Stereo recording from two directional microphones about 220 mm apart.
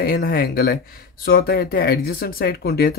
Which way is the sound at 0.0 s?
45° left (ahead or behind).